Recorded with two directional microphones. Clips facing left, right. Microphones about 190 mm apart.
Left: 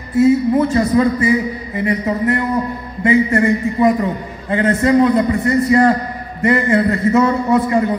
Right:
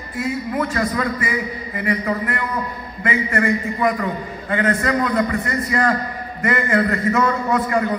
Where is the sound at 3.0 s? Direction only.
35° left (ahead or behind).